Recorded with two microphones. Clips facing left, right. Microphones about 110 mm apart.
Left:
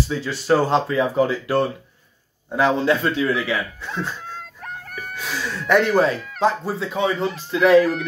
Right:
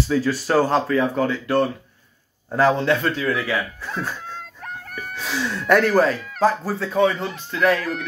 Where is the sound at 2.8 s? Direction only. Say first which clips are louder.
Left 1 dB; 25° left (ahead or behind).